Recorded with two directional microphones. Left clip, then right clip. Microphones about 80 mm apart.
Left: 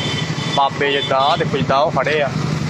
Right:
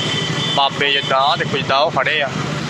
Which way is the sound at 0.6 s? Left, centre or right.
Left.